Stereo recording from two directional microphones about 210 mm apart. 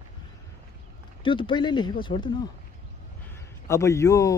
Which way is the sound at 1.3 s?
25° left (ahead or behind).